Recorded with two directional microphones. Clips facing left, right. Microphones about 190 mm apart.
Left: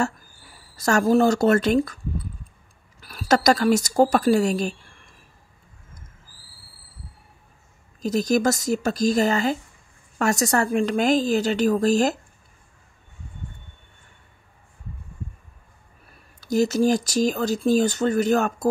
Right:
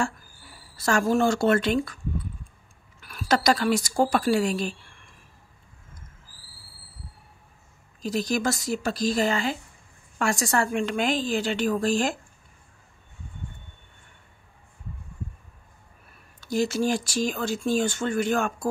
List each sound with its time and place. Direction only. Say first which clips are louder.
0.7 s speech: left 4 dB; 40° left (ahead or behind)
3.0 s speech: left 4 dB; 35° left (ahead or behind)
8.0 s speech: left 5 dB; 45° left (ahead or behind)
16.3 s speech: left 5 dB; 40° left (ahead or behind)